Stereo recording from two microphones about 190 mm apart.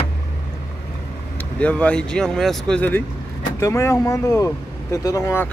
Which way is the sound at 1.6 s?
5° left (ahead or behind).